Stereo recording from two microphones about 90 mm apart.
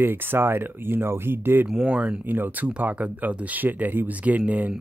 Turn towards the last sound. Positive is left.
turn(degrees=-15)  # may be behind; listen again after turning